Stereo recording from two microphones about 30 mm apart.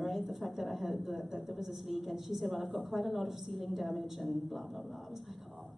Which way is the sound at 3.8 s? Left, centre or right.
Centre.